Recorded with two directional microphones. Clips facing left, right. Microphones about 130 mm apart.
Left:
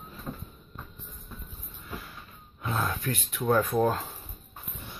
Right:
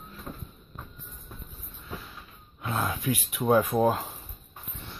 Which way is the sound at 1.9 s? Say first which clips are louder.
Even; centre (ahead or behind).